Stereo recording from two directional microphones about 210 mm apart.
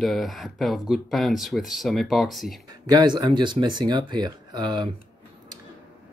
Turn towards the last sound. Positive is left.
turn(degrees=-20)  # may be behind; listen again after turning